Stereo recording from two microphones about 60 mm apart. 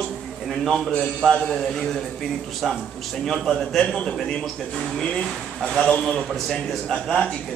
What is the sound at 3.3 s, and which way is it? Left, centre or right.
A man's voice, centre.